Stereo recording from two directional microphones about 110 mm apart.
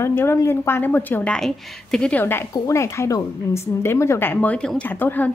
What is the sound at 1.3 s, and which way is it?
Speech, 5° left (ahead or behind).